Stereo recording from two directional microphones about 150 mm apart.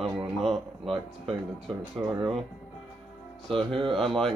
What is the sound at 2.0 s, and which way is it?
Speech, centre (ahead or behind).